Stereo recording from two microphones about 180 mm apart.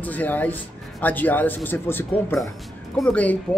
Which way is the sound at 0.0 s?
10° left (ahead or behind).